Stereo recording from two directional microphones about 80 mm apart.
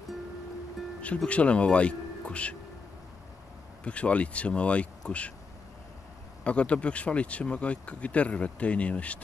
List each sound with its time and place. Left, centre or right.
1.0 s a man's voice: centre
3.8 s speech: centre
6.4 s speech: centre